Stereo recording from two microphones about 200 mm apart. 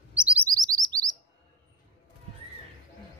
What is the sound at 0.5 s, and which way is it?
Chirp, 20° right (ahead or behind).